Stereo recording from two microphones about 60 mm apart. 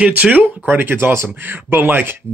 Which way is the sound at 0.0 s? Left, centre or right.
Right.